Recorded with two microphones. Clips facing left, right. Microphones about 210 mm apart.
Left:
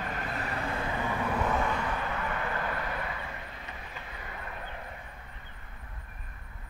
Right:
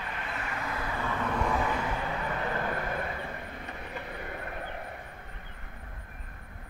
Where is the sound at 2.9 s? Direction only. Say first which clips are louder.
Right 3 dB; 50° right (ahead or behind).